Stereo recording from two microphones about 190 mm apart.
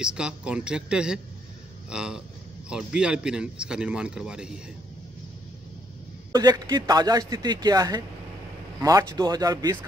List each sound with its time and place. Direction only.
0.0 s a man's voice: 5° right (ahead or behind)
6.3 s a man's voice: 20° right (ahead or behind)